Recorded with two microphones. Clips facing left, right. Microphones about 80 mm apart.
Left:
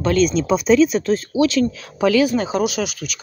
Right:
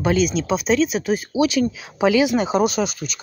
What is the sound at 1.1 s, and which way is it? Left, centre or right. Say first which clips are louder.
Speech: left 2 dB; centre.